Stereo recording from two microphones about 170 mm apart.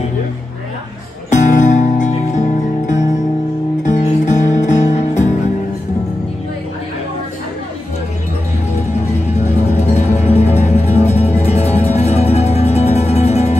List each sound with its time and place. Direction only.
1.3 s music: 45° left (ahead or behind)
8.7 s music: 40° left (ahead or behind)